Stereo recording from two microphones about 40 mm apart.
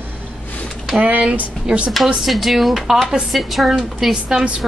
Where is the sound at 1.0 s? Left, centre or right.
Right.